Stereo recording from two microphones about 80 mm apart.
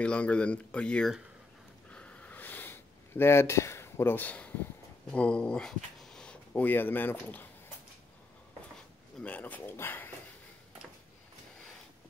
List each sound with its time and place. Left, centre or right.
0.0 s speech: centre
1.9 s a sound: centre
5.1 s speech: centre
9.2 s speech: centre